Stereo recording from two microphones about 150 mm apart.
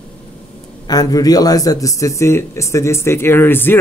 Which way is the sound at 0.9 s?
25° left (ahead or behind).